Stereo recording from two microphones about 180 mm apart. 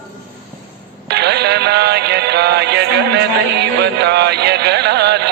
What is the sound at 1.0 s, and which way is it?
Music, 70° right (ahead or behind).